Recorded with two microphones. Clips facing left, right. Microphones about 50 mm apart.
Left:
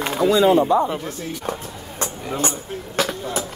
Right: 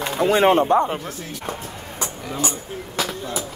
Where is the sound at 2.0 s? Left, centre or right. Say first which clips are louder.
Left 2 dB; left.